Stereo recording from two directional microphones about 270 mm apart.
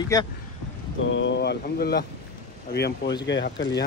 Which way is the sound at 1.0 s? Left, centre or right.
Left.